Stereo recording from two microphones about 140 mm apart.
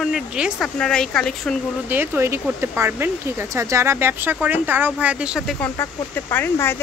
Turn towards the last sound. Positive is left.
turn(degrees=20)  # may be behind; listen again after turning